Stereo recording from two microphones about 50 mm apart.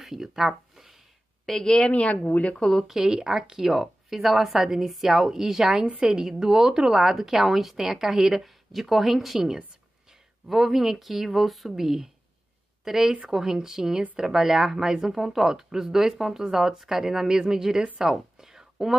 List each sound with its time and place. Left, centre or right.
0.0 s speech: centre
1.4 s a woman's voice: centre
1.9 s speech: left
2.8 s a woman's voice: centre
17.9 s a sound: centre